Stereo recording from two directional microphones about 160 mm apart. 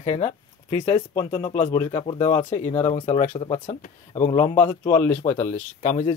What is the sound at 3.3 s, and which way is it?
Speech, 30° left (ahead or behind).